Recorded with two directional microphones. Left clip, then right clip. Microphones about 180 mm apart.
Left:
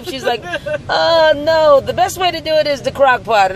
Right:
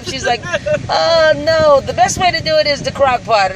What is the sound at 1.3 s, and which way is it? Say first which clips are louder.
Speech: even; 5° left (ahead or behind).